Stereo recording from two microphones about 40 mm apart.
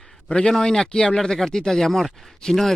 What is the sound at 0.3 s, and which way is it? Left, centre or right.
Speech, centre.